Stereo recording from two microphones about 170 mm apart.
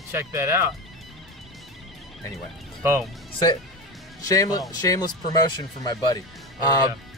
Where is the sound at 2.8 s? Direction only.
15° right (ahead or behind).